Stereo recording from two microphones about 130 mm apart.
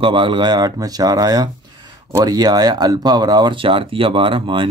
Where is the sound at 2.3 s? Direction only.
30° right (ahead or behind).